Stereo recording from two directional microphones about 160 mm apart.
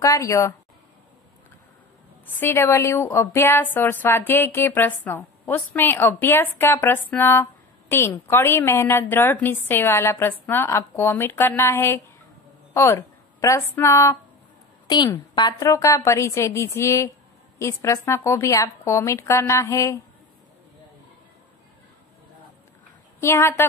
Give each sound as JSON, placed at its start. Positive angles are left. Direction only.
{"t": 0.0, "sound": "a woman's voice", "side_deg": 20}
{"t": 2.4, "sound": "a woman's voice", "side_deg": 15}
{"t": 23.2, "sound": "a woman's voice", "side_deg": 15}